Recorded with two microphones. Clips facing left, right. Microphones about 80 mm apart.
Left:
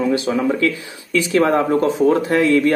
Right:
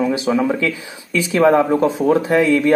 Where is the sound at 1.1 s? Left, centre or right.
Centre.